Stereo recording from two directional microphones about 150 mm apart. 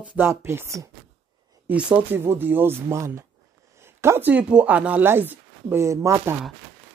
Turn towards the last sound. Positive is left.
turn(degrees=-20)  # may be behind; listen again after turning